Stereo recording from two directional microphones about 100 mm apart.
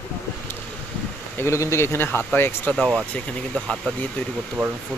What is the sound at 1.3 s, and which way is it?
Speech, 25° left (ahead or behind).